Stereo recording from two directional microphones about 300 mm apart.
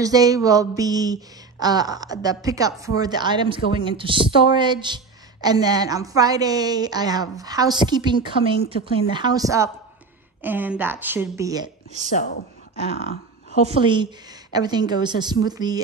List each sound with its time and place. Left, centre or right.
0.0 s speech: centre
12.9 s a sound: left
13.7 s speech: centre